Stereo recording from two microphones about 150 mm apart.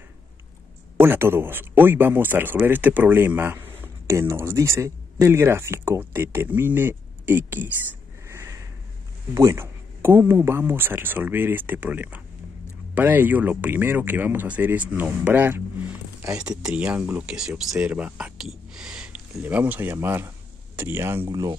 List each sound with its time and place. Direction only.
0.9 s speech: 15° right (ahead or behind)
8.3 s a sound: 20° right (ahead or behind)
9.3 s speech: 20° right (ahead or behind)